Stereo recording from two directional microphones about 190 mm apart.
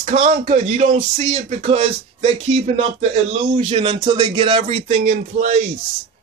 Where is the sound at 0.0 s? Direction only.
35° right (ahead or behind).